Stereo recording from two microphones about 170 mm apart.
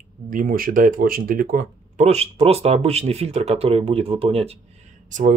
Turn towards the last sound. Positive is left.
turn(degrees=-50)  # may be behind; listen again after turning